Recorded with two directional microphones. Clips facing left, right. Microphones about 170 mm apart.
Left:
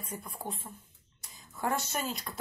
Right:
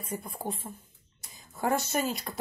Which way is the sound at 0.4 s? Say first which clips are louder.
Right 5 dB; 35° right (ahead or behind).